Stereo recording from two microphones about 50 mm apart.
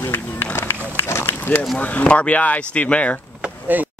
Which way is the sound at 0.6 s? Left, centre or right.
Left.